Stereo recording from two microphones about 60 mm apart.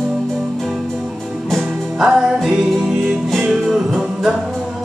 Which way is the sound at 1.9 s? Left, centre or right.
Centre.